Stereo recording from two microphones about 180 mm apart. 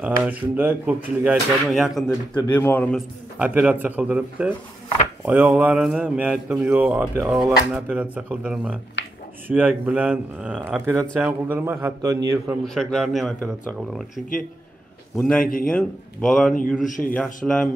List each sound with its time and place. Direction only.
0.0 s speech: 10° right (ahead or behind)
2.5 s a man's voice: 10° left (ahead or behind)
3.3 s speech: 10° right (ahead or behind)
9.0 s a sound: 80° left
9.5 s speech: 10° right (ahead or behind)
12.6 s speech: centre (ahead or behind)
15.1 s a man's voice: 5° left (ahead or behind)
15.4 s speech: 50° left (ahead or behind)
15.7 s speech: 5° left (ahead or behind)
16.8 s speech: 45° left (ahead or behind)
17.4 s speech: centre (ahead or behind)